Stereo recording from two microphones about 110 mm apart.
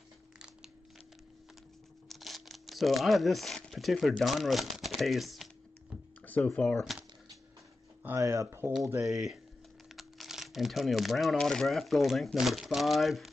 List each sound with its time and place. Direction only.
2.0 s speech: centre (ahead or behind)
6.2 s speech: 15° left (ahead or behind)
6.8 s typewriter: 5° right (ahead or behind)
8.2 s speech: 30° right (ahead or behind)
9.0 s speech: centre (ahead or behind)